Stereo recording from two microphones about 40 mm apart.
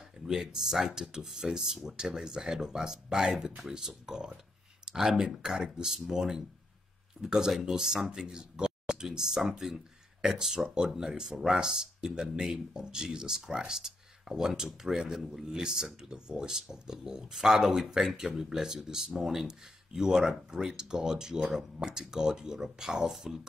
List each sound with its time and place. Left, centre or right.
0.3 s speech: centre
21.7 s speech: right